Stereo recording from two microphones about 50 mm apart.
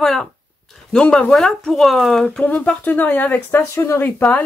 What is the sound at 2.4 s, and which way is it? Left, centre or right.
Speech, left.